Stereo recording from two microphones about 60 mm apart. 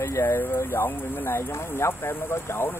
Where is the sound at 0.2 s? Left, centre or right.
Left.